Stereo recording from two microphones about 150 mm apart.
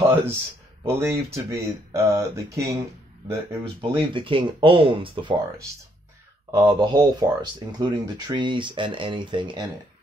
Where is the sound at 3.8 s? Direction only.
35° right (ahead or behind).